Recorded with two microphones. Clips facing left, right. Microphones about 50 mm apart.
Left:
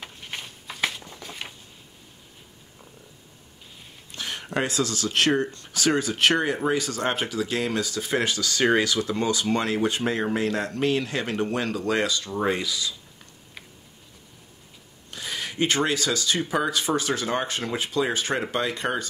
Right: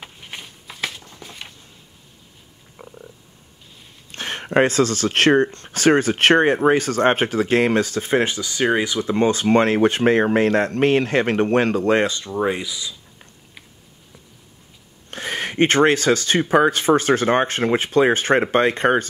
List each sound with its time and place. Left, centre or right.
0.0 s a sound: centre
4.1 s speech: right
9.1 s speech: right
12.3 s speech: centre
15.0 s speech: right